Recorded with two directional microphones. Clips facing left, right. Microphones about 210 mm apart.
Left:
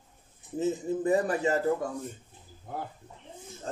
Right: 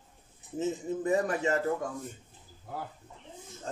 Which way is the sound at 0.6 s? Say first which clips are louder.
Left 3 dB; 35° left (ahead or behind).